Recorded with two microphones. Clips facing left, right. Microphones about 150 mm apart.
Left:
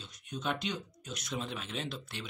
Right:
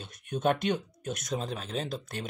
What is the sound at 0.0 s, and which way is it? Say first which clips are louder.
Speech: right 9 dB; 55° right (ahead or behind).